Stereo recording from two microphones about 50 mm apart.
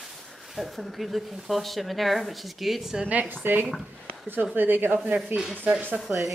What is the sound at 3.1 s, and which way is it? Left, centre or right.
Speech, right.